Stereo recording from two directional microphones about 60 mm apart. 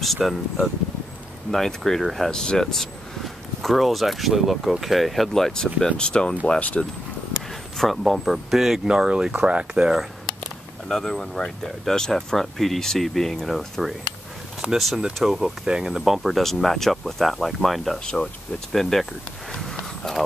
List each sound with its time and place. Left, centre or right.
0.0 s speech: centre
5.9 s speech: centre
7.8 s speech: centre
10.9 s speech: centre
17.9 s speech: centre
19.5 s walk: centre